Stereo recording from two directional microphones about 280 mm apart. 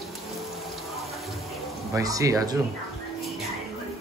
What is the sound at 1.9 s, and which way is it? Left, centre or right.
Speech, centre.